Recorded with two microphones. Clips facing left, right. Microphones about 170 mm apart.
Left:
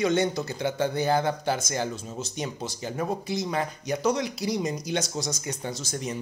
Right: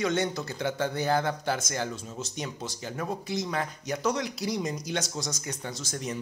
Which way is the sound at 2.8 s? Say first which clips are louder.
Left 4 dB; 20° left (ahead or behind).